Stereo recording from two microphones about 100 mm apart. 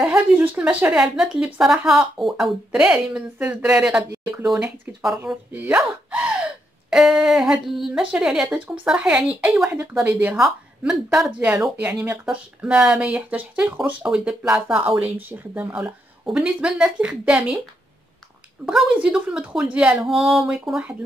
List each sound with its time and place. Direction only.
0.1 s speech: 15° right (ahead or behind)
6.9 s a sound: 5° right (ahead or behind)
8.1 s speech: 5° right (ahead or behind)
9.7 s a woman's voice: 30° right (ahead or behind)
10.0 s speech: 15° right (ahead or behind)
10.3 s speech: 5° right (ahead or behind)
14.8 s a woman's voice: 20° right (ahead or behind)
18.7 s a sound: 5° right (ahead or behind)
19.0 s speech: 10° right (ahead or behind)
20.1 s a sound: centre (ahead or behind)